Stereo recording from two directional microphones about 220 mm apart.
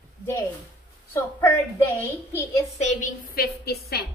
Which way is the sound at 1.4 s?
10° left (ahead or behind).